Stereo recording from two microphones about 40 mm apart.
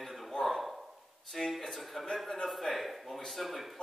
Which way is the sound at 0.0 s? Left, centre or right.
Centre.